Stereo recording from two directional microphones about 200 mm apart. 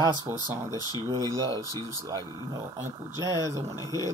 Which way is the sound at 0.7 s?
20° left (ahead or behind).